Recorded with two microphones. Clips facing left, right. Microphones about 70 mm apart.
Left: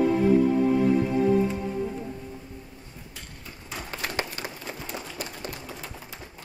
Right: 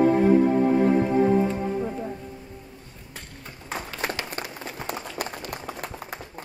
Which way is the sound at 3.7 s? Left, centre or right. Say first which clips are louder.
Right 4 dB; right.